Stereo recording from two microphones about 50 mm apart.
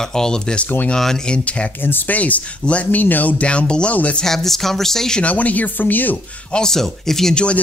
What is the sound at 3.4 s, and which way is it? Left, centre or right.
Speech, left.